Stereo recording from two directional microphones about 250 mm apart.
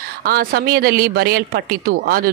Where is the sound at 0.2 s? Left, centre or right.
Right.